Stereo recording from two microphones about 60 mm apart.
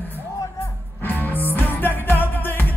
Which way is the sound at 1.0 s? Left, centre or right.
Left.